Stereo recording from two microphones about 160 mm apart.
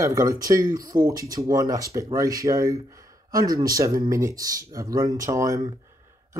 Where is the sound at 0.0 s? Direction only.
20° right (ahead or behind).